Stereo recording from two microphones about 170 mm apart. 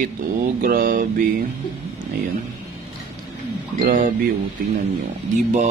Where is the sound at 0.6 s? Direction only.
55° right (ahead or behind).